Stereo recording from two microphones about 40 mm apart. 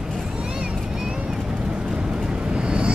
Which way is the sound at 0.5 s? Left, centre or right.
Right.